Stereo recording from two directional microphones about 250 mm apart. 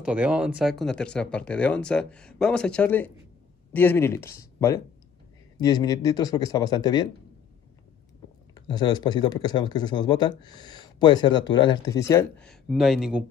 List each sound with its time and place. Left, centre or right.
0.0 s speech: centre
8.5 s speech: centre
10.6 s a sound: right
11.0 s speech: centre